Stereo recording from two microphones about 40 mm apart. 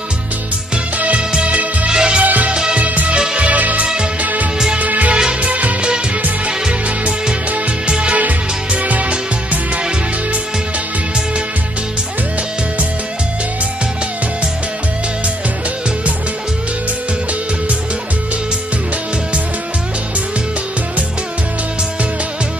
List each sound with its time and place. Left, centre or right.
0.9 s music: right
1.9 s music: right
2.2 s music: right
2.5 s music: right
2.8 s music: right
3.8 s music: right
4.2 s music: right
6.4 s music: right
8.2 s music: right